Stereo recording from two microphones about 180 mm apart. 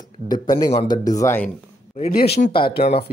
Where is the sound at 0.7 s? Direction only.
30° left (ahead or behind).